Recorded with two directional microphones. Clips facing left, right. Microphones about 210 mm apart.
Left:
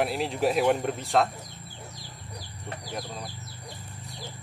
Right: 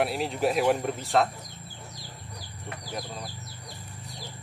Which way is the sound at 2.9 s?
Centre (ahead or behind).